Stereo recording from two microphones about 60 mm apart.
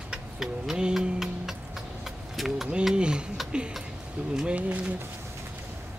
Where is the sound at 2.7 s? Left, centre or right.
Centre.